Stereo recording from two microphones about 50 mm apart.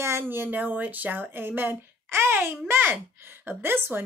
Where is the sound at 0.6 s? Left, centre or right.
Right.